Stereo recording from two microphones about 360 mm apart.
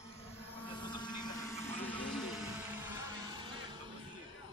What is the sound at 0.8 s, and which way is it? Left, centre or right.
Vehicle, centre.